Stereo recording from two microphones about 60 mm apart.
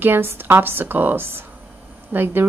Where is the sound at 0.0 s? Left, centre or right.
Right.